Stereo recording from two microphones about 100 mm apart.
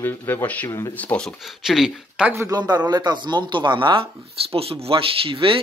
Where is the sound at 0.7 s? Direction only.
35° left (ahead or behind).